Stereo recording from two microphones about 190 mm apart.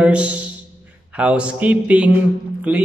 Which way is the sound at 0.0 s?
5° right (ahead or behind).